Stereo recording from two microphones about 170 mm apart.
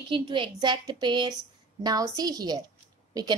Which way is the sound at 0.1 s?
30° right (ahead or behind).